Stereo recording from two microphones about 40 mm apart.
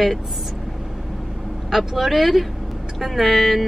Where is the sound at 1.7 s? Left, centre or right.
Centre.